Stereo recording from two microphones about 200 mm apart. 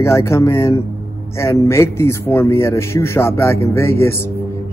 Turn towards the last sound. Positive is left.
turn(degrees=10)  # may be behind; listen again after turning